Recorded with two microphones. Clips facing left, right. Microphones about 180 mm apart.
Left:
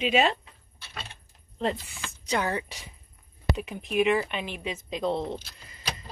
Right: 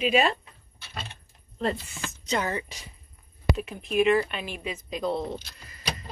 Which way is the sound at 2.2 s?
10° left (ahead or behind).